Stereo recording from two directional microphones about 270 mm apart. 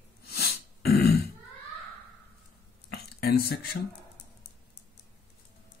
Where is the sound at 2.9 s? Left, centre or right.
Left.